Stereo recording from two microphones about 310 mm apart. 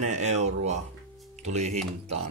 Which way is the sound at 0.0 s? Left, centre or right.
Right.